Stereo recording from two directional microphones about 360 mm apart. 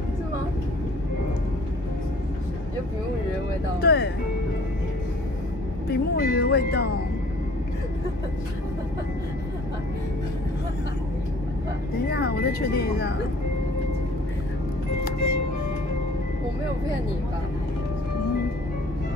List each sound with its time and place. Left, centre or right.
3.8 s speech: left
5.9 s speech: left
12.1 s speech: left